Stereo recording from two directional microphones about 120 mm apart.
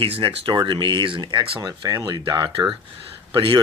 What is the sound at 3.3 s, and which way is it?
Speech, 45° right (ahead or behind).